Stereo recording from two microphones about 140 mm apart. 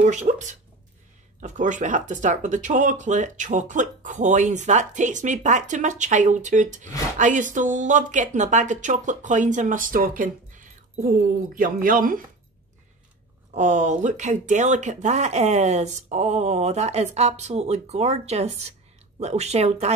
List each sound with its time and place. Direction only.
0.0 s speech: 60° right (ahead or behind); by 12.2 s 80° right
13.5 s speech: 60° right (ahead or behind)